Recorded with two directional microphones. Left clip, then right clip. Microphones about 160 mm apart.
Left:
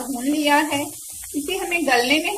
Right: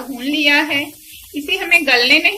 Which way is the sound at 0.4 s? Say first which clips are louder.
Right 5 dB; 45° left (ahead or behind).